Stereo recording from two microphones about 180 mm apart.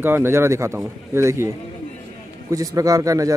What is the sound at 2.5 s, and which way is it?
Speech, 20° right (ahead or behind).